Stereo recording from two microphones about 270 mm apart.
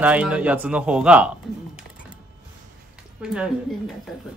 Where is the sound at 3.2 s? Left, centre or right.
Centre.